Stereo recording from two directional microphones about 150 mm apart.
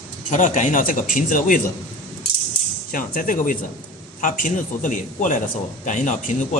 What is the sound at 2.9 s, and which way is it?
A man's voice, 60° left (ahead or behind).